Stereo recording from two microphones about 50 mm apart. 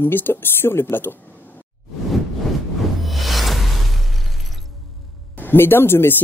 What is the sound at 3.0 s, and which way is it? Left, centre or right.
Music, centre.